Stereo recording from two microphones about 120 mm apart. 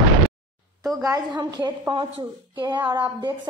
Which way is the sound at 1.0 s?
25° right (ahead or behind).